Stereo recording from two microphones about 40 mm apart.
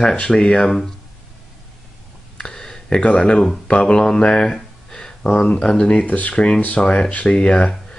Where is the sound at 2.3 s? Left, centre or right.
Centre.